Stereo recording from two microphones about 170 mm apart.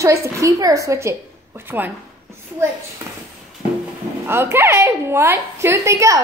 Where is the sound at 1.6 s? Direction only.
10° right (ahead or behind).